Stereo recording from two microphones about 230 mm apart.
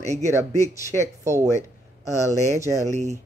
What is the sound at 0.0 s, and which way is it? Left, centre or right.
Speech, right.